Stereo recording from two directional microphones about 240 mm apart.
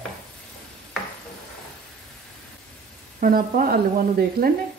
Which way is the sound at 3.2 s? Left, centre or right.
Right.